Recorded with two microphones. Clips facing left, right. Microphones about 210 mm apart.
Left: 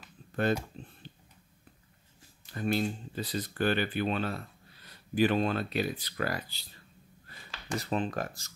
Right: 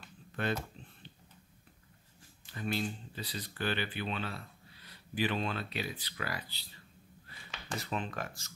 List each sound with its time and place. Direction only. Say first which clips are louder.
0.4 s speech: left 6 dB; 40° left (ahead or behind)
0.8 s a sound: left 7 dB; 40° left (ahead or behind)
2.5 s speech: left 6 dB; 45° left (ahead or behind)
7.8 s speech: left 6 dB; 35° left (ahead or behind)